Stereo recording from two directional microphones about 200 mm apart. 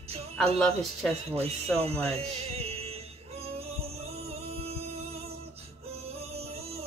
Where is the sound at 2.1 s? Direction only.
30° right (ahead or behind).